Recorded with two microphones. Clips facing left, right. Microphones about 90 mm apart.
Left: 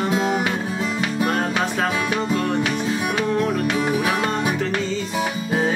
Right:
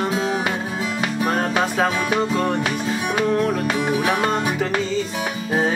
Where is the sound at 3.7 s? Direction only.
Centre (ahead or behind).